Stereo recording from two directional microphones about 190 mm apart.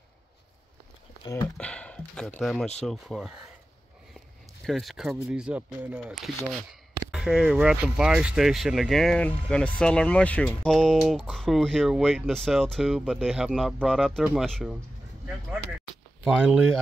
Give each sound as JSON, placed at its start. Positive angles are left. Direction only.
{"t": 1.2, "sound": "speech", "side_deg": 20}
{"t": 1.6, "sound": "speech", "side_deg": 5}
{"t": 4.6, "sound": "speech", "side_deg": 0}
{"t": 16.3, "sound": "speech", "side_deg": -5}